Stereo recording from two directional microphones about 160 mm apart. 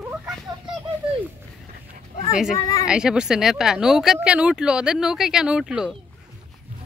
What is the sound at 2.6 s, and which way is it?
Speech, 20° left (ahead or behind).